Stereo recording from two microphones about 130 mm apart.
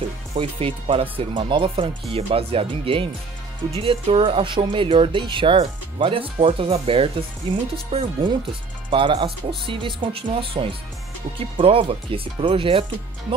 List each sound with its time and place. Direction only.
0.4 s speech: 45° right (ahead or behind)